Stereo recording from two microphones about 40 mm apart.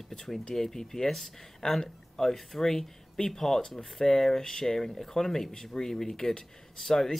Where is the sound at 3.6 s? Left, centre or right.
Left.